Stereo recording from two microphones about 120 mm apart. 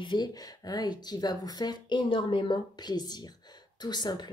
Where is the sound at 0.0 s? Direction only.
40° left (ahead or behind).